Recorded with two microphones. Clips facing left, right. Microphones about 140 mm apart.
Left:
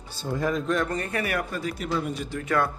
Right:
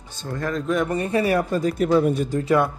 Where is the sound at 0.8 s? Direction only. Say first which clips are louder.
Right 7 dB; 25° right (ahead or behind); by 2.4 s 50° right (ahead or behind).